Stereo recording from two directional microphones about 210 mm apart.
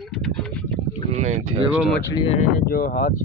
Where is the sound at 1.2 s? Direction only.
35° right (ahead or behind).